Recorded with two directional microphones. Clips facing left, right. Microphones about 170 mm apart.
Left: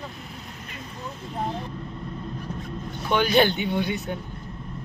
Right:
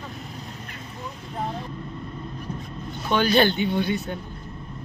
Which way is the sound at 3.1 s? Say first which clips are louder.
Even; 15° left (ahead or behind).